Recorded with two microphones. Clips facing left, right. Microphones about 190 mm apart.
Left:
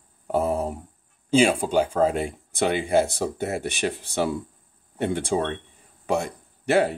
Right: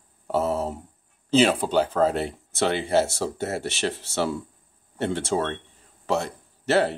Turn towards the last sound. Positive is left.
turn(degrees=10)  # may be behind; listen again after turning